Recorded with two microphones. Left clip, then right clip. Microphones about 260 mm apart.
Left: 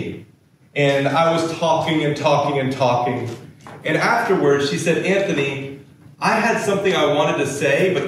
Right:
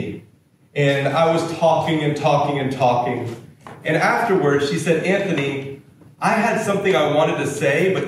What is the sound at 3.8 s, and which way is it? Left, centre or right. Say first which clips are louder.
A man's voice: even; centre.